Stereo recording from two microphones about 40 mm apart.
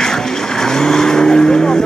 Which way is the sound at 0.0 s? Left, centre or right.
Centre.